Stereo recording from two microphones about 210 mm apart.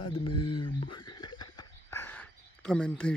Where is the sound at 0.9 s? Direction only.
20° left (ahead or behind).